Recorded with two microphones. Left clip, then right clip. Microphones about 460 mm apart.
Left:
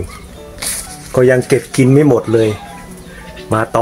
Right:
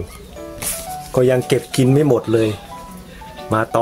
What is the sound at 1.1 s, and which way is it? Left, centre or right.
Speech, right.